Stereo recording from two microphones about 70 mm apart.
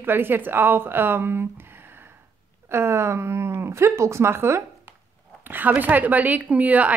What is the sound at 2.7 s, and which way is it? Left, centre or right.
A woman's voice, right.